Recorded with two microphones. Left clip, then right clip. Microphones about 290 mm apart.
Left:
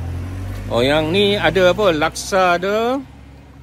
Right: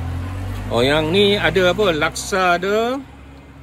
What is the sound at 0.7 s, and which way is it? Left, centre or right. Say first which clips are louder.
Speech: left 1 dB; centre.